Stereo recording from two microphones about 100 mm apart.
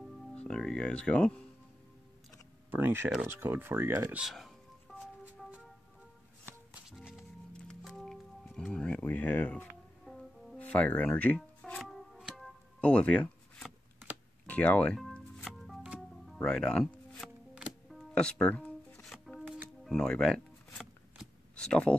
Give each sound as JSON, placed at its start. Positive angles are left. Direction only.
{"t": 0.3, "sound": "speech", "side_deg": 10}
{"t": 2.7, "sound": "speech", "side_deg": -20}
{"t": 4.3, "sound": "telephone dialing", "side_deg": 0}
{"t": 7.5, "sound": "music", "side_deg": 10}
{"t": 10.0, "sound": "music", "side_deg": 5}
{"t": 10.6, "sound": "music", "side_deg": 15}
{"t": 11.8, "sound": "music", "side_deg": -5}
{"t": 12.8, "sound": "speech", "side_deg": 15}
{"t": 14.4, "sound": "speech", "side_deg": 15}
{"t": 15.0, "sound": "music", "side_deg": 0}
{"t": 16.4, "sound": "speech", "side_deg": 10}
{"t": 17.2, "sound": "music", "side_deg": 0}
{"t": 19.0, "sound": "music", "side_deg": 0}
{"t": 21.5, "sound": "speech", "side_deg": 10}